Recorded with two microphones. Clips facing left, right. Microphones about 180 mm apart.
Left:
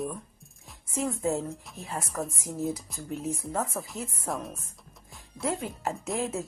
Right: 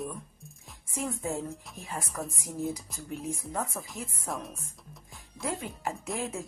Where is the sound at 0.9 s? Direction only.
35° left (ahead or behind).